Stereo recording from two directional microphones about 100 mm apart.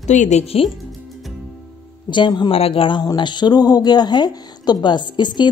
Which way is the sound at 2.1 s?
50° left (ahead or behind).